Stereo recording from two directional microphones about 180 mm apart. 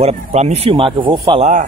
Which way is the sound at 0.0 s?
35° right (ahead or behind).